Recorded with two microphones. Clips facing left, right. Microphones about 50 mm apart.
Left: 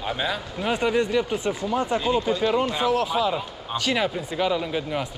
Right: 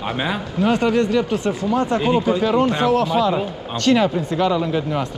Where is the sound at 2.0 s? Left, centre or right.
Right.